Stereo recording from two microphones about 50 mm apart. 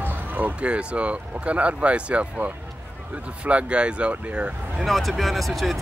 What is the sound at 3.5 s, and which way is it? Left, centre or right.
Speech, right.